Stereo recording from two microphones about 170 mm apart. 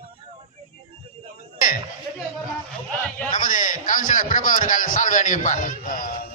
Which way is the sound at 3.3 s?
50° left (ahead or behind).